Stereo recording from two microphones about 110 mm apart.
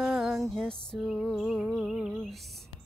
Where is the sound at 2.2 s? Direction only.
Centre (ahead or behind).